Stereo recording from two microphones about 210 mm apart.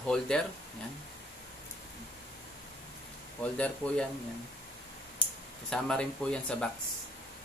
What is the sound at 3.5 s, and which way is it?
Speech, 5° left (ahead or behind).